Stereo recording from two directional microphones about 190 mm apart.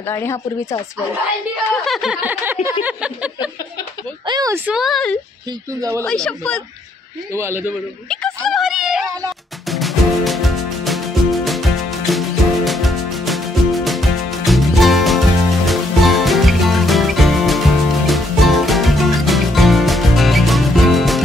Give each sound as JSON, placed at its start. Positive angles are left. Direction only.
{"t": 0.1, "sound": "speech", "side_deg": 15}
{"t": 1.9, "sound": "snicker", "side_deg": 0}
{"t": 4.3, "sound": "a woman's voice", "side_deg": -20}
{"t": 4.6, "sound": "speech", "side_deg": 0}
{"t": 5.8, "sound": "snicker", "side_deg": -15}
{"t": 6.0, "sound": "speech", "side_deg": 5}
{"t": 7.3, "sound": "snicker", "side_deg": -15}
{"t": 8.1, "sound": "a sound", "side_deg": 5}
{"t": 9.7, "sound": "music", "side_deg": 0}